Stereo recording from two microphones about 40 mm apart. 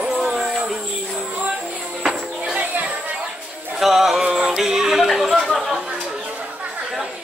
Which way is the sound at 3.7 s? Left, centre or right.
Centre.